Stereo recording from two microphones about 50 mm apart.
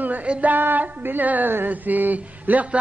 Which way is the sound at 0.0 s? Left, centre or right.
Right.